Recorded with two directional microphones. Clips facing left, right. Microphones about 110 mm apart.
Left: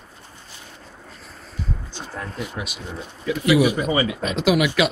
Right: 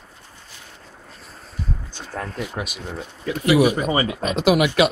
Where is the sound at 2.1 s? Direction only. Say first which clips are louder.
Right 3 dB; 50° right (ahead or behind).